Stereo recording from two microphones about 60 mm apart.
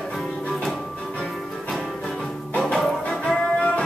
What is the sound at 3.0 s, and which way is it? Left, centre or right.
Music, centre.